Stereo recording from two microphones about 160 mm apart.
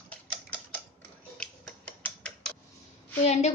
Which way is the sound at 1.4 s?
5° left (ahead or behind).